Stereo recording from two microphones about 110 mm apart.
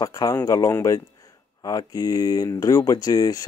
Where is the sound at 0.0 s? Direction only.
35° left (ahead or behind).